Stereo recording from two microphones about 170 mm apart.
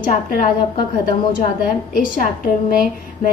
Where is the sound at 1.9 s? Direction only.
55° left (ahead or behind).